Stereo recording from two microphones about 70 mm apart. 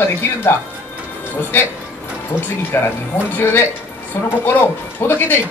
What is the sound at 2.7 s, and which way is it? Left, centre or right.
Speech, left.